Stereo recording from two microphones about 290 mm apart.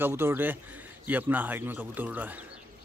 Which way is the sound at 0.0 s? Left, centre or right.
Centre.